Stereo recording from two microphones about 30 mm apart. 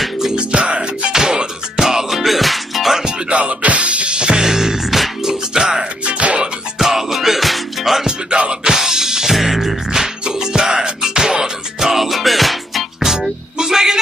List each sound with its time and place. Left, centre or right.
0.4 s music: right
1.1 s music: right; by 2.9 s centre
2.9 s music: right
3.3 s music: right
4.1 s music: right
4.4 s music: centre
5.2 s music: centre
6.0 s music: right
6.8 s music: centre
8.0 s music: right
8.6 s music: centre
9.8 s music: centre
11.9 s music: centre
13.0 s music: centre